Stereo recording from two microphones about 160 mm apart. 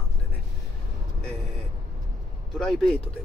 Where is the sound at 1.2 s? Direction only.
5° left (ahead or behind).